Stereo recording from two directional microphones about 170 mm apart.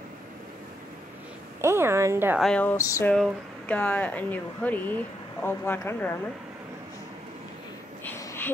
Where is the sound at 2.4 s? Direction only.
10° left (ahead or behind).